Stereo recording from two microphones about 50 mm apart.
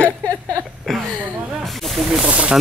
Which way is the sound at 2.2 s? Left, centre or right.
Right.